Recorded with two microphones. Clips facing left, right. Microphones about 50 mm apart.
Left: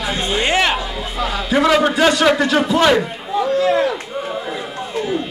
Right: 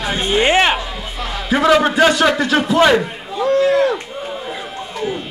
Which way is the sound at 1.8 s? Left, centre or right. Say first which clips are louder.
Right 1 dB; right.